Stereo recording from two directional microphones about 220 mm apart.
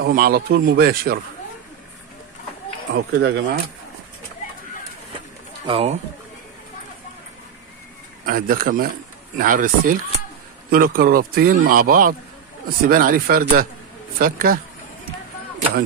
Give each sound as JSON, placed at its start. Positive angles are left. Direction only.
{"t": 0.0, "sound": "speech", "side_deg": -45}
{"t": 2.9, "sound": "speech", "side_deg": -50}
{"t": 5.7, "sound": "speech", "side_deg": -25}
{"t": 8.3, "sound": "speech", "side_deg": -40}